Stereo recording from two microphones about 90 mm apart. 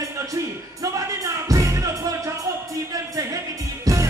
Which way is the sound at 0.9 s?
40° right (ahead or behind).